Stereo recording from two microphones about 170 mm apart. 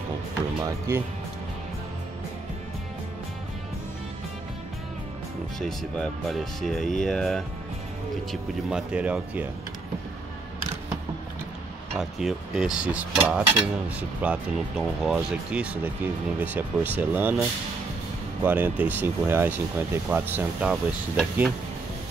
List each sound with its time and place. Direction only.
0.6 s speech: 15° right (ahead or behind)
5.6 s speech: centre (ahead or behind)
12.0 s speech: centre (ahead or behind)
18.4 s speech: 10° right (ahead or behind)
20.7 s speech: centre (ahead or behind)